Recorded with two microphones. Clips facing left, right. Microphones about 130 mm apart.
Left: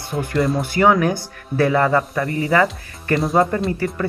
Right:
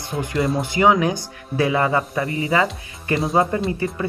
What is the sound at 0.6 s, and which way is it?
Speech, 15° right (ahead or behind).